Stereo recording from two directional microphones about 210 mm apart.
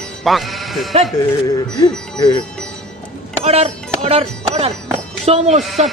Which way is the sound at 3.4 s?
30° right (ahead or behind).